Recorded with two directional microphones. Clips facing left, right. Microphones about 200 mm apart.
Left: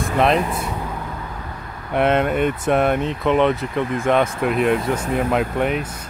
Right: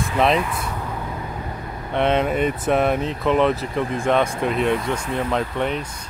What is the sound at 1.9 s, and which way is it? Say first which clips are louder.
Speech: left 2 dB; 5° left (ahead or behind).